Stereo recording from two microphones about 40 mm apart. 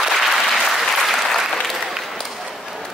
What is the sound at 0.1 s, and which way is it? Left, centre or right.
Applause, centre.